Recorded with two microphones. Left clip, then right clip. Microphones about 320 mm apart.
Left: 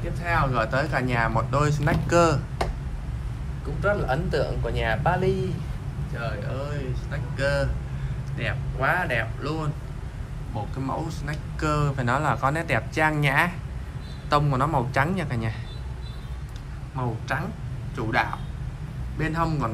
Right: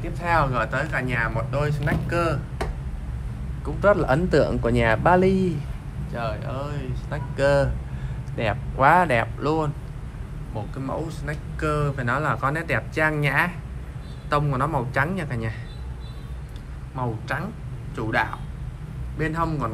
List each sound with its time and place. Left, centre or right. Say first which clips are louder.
0.3 s speech: right 2 dB; centre
3.8 s a man's voice: right 6 dB; centre
6.1 s speech: right 3 dB; centre
16.9 s speech: right 1 dB; centre